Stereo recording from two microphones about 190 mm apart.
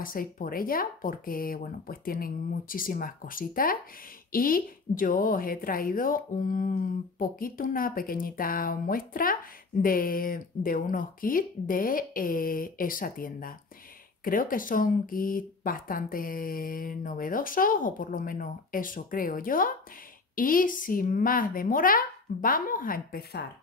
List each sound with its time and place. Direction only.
0.0 s a woman's voice: 45° left (ahead or behind)